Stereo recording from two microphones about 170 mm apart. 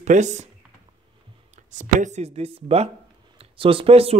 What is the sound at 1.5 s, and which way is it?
Speech, 45° right (ahead or behind).